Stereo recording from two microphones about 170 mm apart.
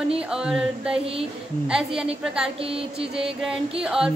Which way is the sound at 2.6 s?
35° right (ahead or behind).